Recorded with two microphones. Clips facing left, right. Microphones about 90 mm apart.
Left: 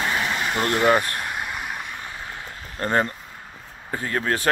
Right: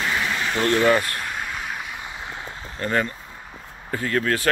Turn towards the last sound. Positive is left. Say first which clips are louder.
# right 2 dB
turn(degrees=25)  # may be behind; listen again after turning